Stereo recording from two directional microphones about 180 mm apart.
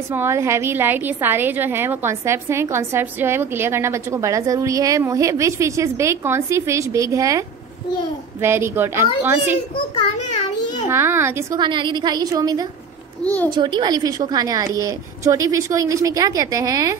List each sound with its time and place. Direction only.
0.1 s a woman's voice: 15° right (ahead or behind)
10.9 s a woman's voice: 15° right (ahead or behind)
11.6 s a woman's voice: 25° right (ahead or behind)
13.2 s a child's voice: 10° left (ahead or behind)
13.5 s a woman's voice: 25° right (ahead or behind)